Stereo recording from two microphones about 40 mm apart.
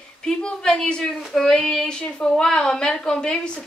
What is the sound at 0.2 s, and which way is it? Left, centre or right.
Child singing, centre.